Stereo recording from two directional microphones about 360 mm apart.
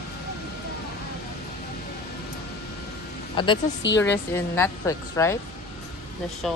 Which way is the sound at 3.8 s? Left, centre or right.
Left.